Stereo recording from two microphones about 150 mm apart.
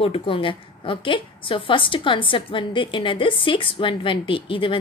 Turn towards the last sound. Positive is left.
turn(degrees=35)  # may be behind; listen again after turning